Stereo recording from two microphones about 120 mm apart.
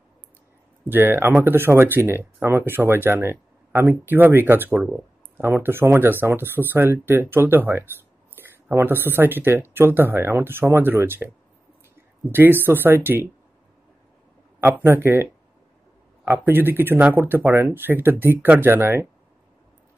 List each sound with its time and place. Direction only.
0.8 s speech: 15° right (ahead or behind)
5.4 s speech: 20° right (ahead or behind)
14.6 s speech: 15° right (ahead or behind)
16.3 s speech: 15° right (ahead or behind)